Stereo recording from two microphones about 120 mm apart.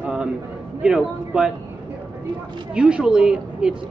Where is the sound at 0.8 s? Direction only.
5° right (ahead or behind).